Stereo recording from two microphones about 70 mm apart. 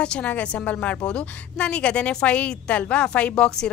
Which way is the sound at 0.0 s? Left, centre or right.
Centre.